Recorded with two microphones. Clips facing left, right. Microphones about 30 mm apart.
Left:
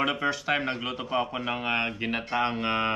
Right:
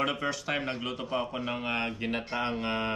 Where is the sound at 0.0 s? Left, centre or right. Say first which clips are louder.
Left 3 dB; centre.